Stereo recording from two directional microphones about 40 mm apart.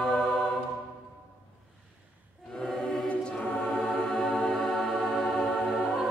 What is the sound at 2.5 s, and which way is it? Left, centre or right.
Choir, centre.